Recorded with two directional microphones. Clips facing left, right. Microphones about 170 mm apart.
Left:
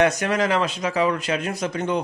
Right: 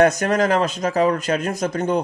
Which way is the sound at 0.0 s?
45° right (ahead or behind).